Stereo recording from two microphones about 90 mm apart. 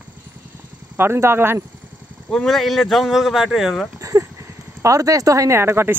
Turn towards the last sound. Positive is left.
turn(degrees=-25)  # may be behind; listen again after turning